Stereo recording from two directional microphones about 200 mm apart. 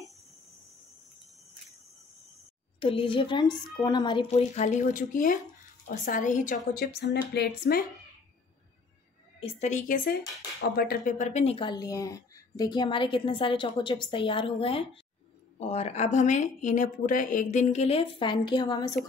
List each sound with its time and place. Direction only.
2.8 s a woman's voice: 25° left (ahead or behind); by 7.8 s 50° left (ahead or behind)
9.4 s a woman's voice: 35° left (ahead or behind)